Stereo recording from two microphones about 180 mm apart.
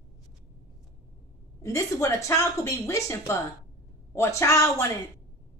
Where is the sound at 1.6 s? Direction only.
15° left (ahead or behind).